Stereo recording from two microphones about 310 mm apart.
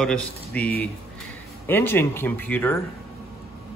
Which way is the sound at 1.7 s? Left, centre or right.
Centre.